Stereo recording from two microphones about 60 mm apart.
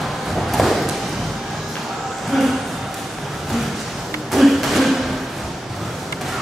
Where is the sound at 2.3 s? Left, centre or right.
Centre.